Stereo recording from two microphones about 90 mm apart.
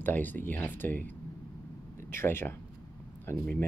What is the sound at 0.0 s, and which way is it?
Speech, 20° left (ahead or behind).